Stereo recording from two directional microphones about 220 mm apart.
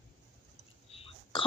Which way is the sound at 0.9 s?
25° left (ahead or behind).